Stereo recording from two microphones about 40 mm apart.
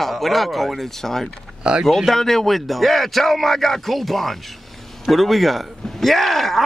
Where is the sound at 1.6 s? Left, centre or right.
Right.